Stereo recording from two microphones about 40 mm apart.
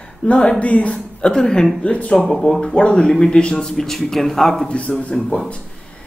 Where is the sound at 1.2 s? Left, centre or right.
Left.